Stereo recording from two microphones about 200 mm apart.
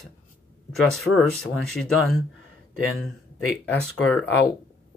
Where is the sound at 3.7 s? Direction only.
5° left (ahead or behind).